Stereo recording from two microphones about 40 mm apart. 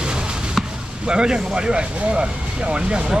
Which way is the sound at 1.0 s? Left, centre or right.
Right.